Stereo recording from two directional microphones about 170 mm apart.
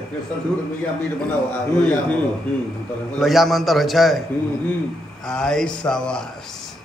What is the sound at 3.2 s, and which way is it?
A man's voice, centre (ahead or behind).